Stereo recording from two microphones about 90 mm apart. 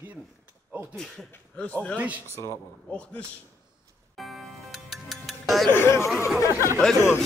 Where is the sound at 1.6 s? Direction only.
15° left (ahead or behind).